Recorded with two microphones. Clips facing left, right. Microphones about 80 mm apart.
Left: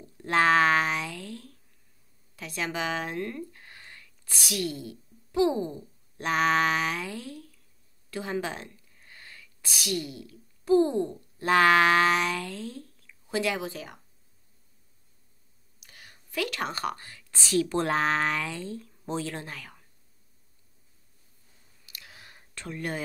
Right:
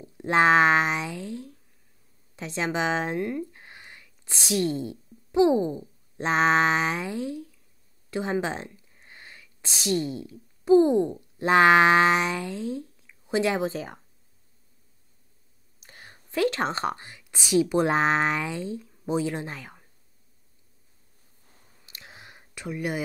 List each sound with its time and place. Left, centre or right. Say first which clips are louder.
0.0 s speech: right 3 dB; right
15.8 s speech: right 4 dB; right
21.8 s a sound: right 3 dB; right